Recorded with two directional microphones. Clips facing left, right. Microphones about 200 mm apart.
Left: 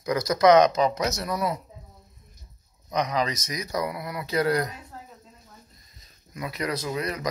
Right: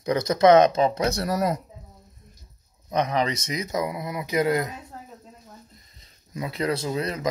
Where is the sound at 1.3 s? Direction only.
45° right (ahead or behind).